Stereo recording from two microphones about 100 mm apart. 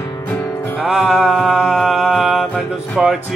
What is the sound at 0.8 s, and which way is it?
Music, centre (ahead or behind).